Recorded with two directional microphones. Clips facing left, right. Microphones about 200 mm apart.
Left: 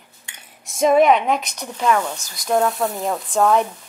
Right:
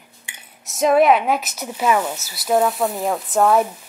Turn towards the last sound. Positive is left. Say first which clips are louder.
# right 1 dB
turn(degrees=-5)  # may be behind; listen again after turning